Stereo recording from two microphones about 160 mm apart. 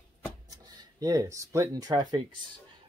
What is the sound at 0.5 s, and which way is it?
Speech, 20° right (ahead or behind).